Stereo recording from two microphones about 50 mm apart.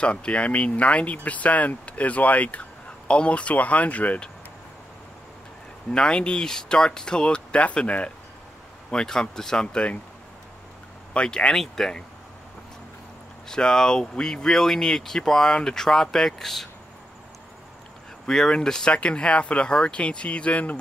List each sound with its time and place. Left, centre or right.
0.0 s speech: left
5.9 s speech: centre
8.9 s speech: centre
11.1 s speech: centre
13.5 s speech: centre
18.2 s speech: centre; by 20.8 s left